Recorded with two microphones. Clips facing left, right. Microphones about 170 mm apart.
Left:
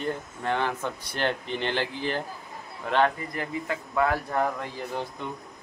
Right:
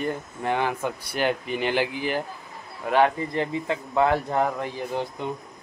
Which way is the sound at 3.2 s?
25° right (ahead or behind).